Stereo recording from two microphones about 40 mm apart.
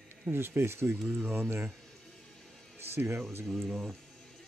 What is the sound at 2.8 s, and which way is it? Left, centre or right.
Music, right.